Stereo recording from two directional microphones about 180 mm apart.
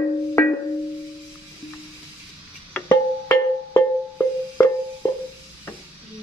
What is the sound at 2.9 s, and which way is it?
Music, 15° left (ahead or behind).